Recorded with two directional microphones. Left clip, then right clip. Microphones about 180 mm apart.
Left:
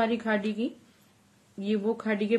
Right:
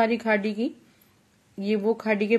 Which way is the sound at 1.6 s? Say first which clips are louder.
Right 4 dB; 30° right (ahead or behind).